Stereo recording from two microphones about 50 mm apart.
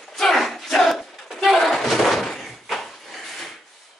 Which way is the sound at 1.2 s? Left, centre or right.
Centre.